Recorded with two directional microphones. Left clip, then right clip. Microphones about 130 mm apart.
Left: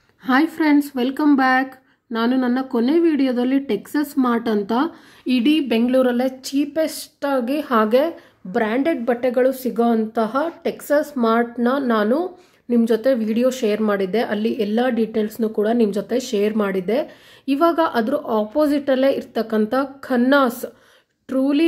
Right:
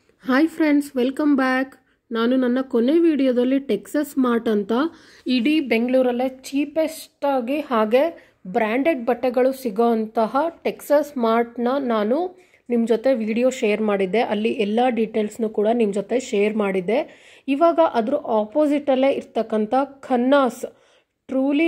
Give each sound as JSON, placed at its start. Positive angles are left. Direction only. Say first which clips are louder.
{"t": 0.2, "sound": "a woman's voice", "louder": "left 1 dB", "side_deg": -30}
{"t": 14.4, "sound": "a woman's voice", "louder": "even", "side_deg": 20}
{"t": 15.4, "sound": "speech", "louder": "left 1 dB", "side_deg": -20}